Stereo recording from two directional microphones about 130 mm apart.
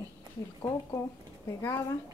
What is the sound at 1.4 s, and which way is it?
Speech, 20° left (ahead or behind).